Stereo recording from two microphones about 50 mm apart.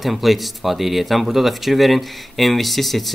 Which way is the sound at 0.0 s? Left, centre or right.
Centre.